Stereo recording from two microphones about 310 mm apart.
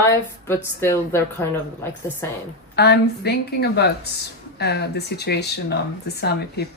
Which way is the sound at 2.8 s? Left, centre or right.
Left.